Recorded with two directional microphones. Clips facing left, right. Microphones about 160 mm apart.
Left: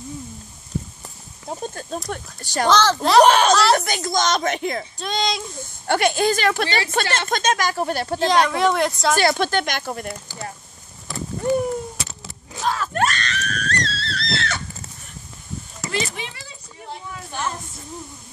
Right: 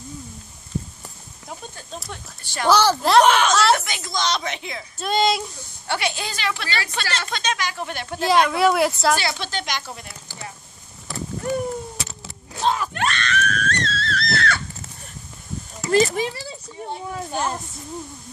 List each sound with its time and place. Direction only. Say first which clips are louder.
1.5 s speech: left 7 dB; 45° left (ahead or behind)
2.7 s a woman's voice: right 1 dB; 10° right (ahead or behind)
3.3 s speech: left 2 dB; 35° left (ahead or behind)
4.9 s speech: right 4 dB; 5° right (ahead or behind)
5.9 s speech: left 8 dB; 50° left (ahead or behind)
8.3 s speech: right 2 dB; 5° right (ahead or behind)
9.2 s speech: left 8 dB; 50° left (ahead or behind)
12.6 s wail: right 2 dB; 15° right (ahead or behind)
12.9 s screaming: left 2 dB; 40° left (ahead or behind); by 14.6 s 25° left (ahead or behind)
15.9 s a sound: right 10 dB; 40° right (ahead or behind)